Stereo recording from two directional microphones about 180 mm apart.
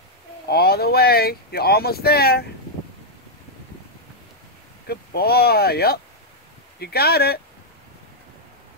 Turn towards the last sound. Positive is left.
turn(degrees=60)  # may be behind; listen again after turning